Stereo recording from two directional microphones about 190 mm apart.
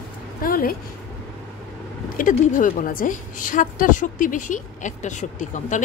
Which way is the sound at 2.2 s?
45° left (ahead or behind).